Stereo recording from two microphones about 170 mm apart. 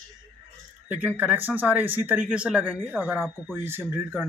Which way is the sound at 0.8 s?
10° right (ahead or behind).